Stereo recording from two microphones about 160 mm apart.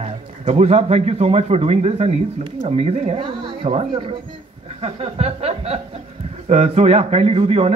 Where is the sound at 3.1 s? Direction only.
30° right (ahead or behind).